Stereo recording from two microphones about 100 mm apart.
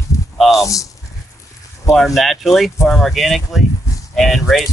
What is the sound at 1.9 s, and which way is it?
Speech, centre (ahead or behind).